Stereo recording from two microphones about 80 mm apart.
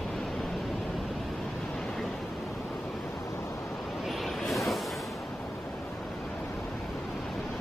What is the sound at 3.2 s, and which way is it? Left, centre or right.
Vehicle, left.